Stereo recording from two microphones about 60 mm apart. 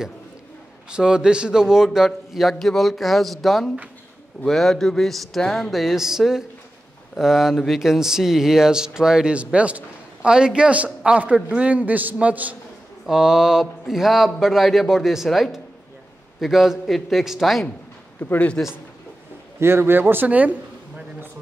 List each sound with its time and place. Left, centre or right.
0.8 s a man's voice: centre
13.0 s speech: centre
18.2 s a man's voice: left
19.6 s speech: right